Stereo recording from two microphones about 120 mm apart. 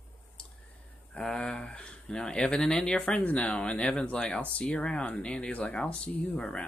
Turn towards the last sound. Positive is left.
turn(degrees=10)  # may be behind; listen again after turning